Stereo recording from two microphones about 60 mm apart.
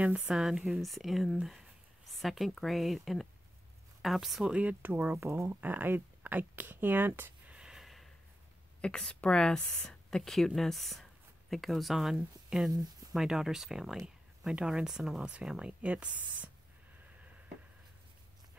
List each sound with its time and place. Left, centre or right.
0.3 s a woman's voice: centre
4.5 s speech: right
7.4 s a sound: centre
7.7 s snort: centre
8.8 s a woman's voice: centre